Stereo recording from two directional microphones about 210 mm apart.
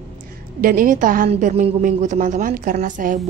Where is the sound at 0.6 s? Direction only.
40° right (ahead or behind).